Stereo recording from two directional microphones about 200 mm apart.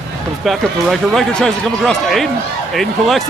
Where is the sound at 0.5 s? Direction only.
Centre (ahead or behind).